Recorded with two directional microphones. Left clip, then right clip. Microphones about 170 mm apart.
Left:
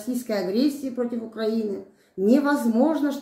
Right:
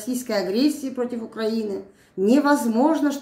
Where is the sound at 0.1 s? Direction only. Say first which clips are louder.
Right 2 dB; 30° right (ahead or behind).